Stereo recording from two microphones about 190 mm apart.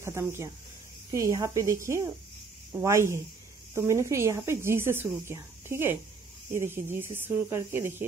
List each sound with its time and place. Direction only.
0.0 s speech: 15° right (ahead or behind)